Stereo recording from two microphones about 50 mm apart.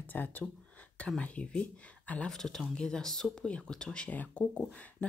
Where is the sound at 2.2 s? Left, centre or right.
Centre.